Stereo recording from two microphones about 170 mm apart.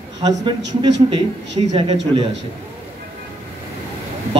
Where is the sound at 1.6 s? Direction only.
30° right (ahead or behind).